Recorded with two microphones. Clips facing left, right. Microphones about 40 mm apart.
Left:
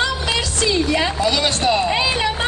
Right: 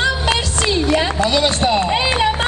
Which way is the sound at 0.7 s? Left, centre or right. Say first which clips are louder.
Right 3 dB; right.